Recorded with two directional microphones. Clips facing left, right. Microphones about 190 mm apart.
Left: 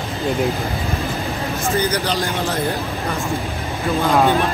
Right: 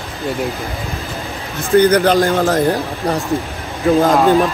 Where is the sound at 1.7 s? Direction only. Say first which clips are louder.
Right 12 dB; 55° right (ahead or behind).